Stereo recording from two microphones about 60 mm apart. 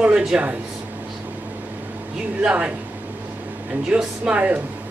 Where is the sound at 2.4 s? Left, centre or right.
Centre.